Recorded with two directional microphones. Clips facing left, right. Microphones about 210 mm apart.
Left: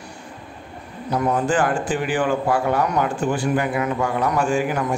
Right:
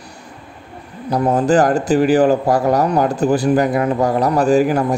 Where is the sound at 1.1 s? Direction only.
35° right (ahead or behind).